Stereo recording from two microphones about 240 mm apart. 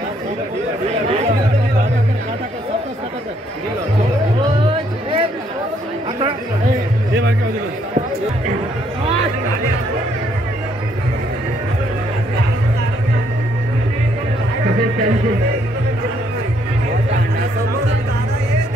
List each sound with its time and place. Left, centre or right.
4.6 s music: right